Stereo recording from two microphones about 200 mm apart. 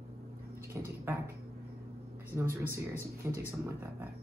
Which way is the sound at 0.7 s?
15° right (ahead or behind).